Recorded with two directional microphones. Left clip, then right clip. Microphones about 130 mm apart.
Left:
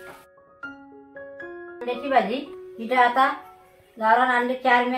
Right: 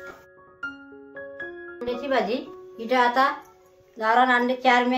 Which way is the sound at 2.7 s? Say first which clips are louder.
Left 1 dB; 30° right (ahead or behind).